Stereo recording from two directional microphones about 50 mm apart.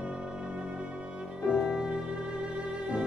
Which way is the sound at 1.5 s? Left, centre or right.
Centre.